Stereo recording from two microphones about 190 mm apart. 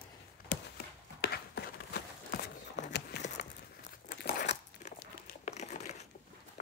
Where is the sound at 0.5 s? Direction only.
65° left (ahead or behind).